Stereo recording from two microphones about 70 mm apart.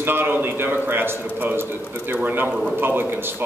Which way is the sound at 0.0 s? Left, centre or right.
Right.